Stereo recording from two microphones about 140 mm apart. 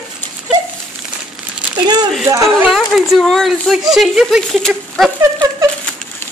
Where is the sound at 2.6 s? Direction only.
Centre (ahead or behind).